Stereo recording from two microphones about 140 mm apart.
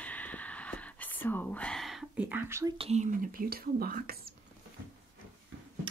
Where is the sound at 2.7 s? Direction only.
50° right (ahead or behind); by 4.3 s 90° right.